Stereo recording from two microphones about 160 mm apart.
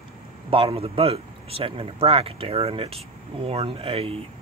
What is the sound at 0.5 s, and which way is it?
Speech, 35° right (ahead or behind).